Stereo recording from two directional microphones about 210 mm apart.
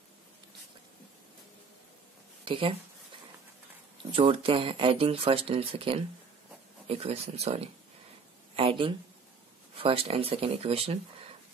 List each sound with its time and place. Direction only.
2.4 s speech: 25° right (ahead or behind)
4.1 s speech: 25° right (ahead or behind)